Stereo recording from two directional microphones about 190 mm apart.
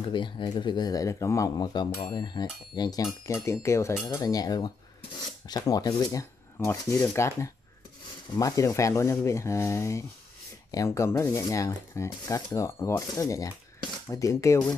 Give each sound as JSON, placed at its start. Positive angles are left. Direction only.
{"t": 0.1, "sound": "speech", "side_deg": 25}